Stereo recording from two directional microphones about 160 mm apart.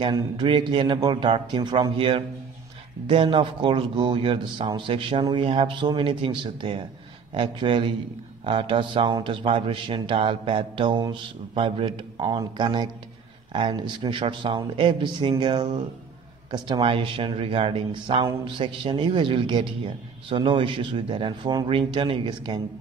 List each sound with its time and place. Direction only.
0.0 s a man's voice: 30° right (ahead or behind)